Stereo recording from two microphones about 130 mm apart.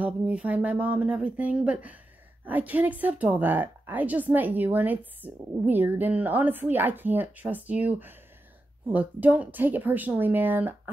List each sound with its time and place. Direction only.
0.0 s a woman's voice: 10° right (ahead or behind)